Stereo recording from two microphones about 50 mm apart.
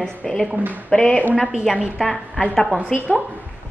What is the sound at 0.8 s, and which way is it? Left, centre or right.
Speech, centre.